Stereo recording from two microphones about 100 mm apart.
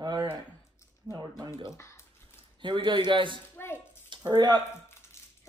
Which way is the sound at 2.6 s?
55° right (ahead or behind).